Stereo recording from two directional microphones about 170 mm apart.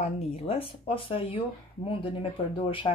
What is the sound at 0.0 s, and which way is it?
Speech, 35° left (ahead or behind).